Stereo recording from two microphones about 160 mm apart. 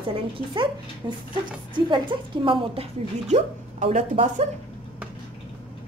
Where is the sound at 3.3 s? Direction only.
50° right (ahead or behind).